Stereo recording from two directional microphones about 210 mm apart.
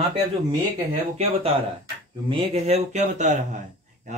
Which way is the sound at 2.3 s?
25° right (ahead or behind).